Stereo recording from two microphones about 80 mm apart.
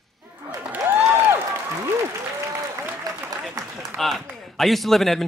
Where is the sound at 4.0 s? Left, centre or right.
Centre.